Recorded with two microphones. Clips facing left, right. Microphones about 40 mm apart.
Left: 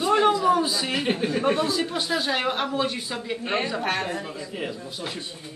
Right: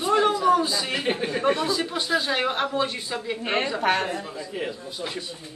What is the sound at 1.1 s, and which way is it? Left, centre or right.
Speech, centre.